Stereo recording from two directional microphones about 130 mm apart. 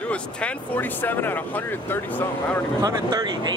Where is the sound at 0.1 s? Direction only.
10° left (ahead or behind).